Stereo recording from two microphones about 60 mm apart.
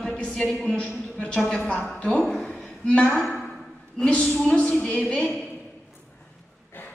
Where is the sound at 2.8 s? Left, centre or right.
Centre.